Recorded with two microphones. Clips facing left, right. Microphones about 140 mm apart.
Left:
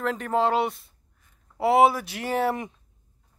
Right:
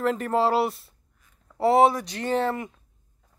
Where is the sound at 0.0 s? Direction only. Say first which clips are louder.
Right 1 dB; centre (ahead or behind).